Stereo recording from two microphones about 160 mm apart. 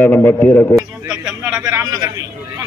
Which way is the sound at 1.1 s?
5° right (ahead or behind).